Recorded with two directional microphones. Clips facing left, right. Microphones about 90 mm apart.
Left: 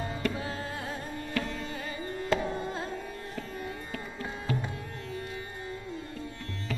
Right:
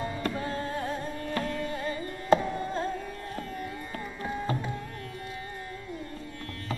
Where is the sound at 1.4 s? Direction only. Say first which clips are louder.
Right 2 dB; 30° right (ahead or behind).